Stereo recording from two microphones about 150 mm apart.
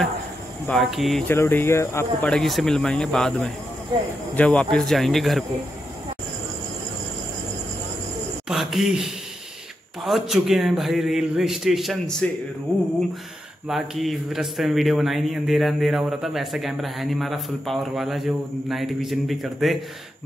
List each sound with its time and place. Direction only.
0.7 s speech: centre (ahead or behind)
1.2 s speech: 15° left (ahead or behind)
2.2 s speech: 5° left (ahead or behind)
8.5 s a man's voice: centre (ahead or behind)
13.7 s speech: centre (ahead or behind)